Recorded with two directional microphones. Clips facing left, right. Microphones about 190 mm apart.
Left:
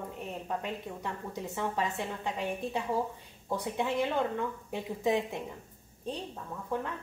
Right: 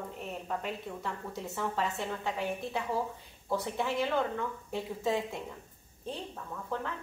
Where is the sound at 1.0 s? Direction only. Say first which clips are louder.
Left 1 dB; 15° left (ahead or behind).